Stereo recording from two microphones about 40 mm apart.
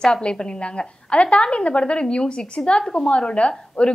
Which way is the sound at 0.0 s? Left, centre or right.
Left.